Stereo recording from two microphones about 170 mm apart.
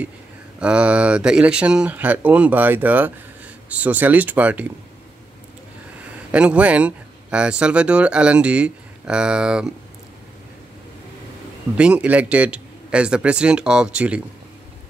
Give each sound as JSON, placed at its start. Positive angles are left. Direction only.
{"t": 0.6, "sound": "speech", "side_deg": -5}
{"t": 6.3, "sound": "speech", "side_deg": -5}
{"t": 11.7, "sound": "speech", "side_deg": -5}